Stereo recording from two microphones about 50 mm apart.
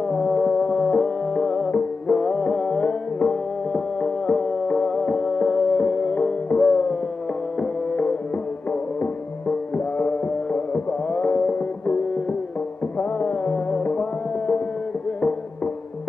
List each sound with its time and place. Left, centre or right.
0.0 s music: centre
5.7 s music: left
9.8 s music: left
13.7 s music: left